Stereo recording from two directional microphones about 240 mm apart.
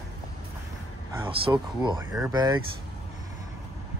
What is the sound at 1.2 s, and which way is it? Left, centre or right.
Speech, centre.